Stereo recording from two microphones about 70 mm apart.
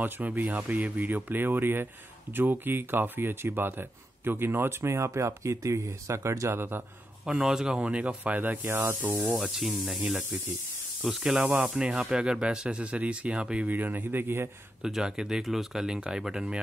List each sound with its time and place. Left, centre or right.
0.0 s speech: right
7.2 s speech: centre; by 9.3 s right
9.4 s speech: centre
13.7 s speech: right
14.8 s speech: centre